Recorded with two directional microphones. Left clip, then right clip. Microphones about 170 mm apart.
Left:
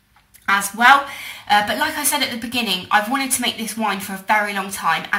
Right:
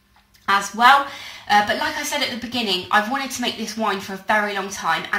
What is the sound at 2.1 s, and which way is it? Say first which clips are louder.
A woman's voice: left 2 dB; 25° right (ahead or behind).